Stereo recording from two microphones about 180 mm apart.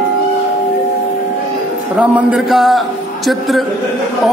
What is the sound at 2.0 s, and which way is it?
Speech, 5° right (ahead or behind).